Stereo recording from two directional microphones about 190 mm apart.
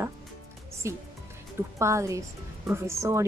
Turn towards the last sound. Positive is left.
turn(degrees=-15)  # may be behind; listen again after turning